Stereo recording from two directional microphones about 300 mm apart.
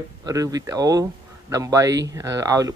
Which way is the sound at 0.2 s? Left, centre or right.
Centre.